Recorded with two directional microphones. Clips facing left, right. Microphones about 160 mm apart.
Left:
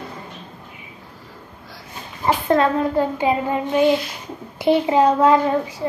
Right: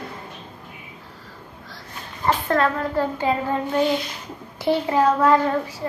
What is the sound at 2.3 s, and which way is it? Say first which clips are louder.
A child's voice: left 3 dB; 20° left (ahead or behind).